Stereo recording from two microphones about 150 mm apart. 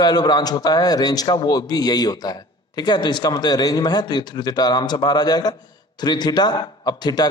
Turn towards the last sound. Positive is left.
turn(degrees=25)  # may be behind; listen again after turning